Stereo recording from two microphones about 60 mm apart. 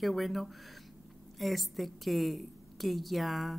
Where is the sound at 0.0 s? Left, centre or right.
Centre.